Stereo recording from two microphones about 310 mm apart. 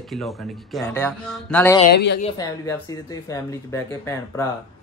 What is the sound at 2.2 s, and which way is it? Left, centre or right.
Speech, centre.